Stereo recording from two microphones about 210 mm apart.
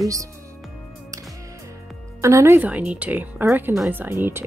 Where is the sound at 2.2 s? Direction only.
15° right (ahead or behind).